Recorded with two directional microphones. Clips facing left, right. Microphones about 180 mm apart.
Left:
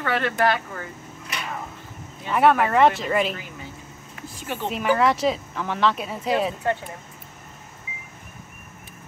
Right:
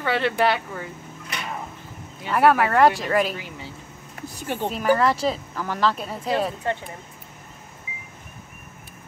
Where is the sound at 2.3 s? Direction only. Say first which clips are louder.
Even; 5° right (ahead or behind).